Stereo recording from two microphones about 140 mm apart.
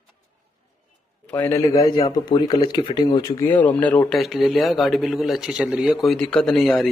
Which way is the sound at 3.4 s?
10° left (ahead or behind).